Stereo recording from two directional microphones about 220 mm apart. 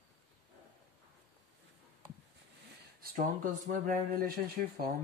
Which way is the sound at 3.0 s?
35° right (ahead or behind).